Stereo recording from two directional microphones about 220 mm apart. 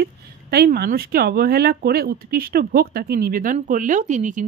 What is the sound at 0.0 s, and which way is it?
Speech, 45° right (ahead or behind).